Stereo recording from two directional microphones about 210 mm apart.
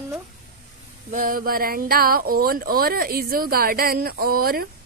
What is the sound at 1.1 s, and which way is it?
Speech, 40° right (ahead or behind).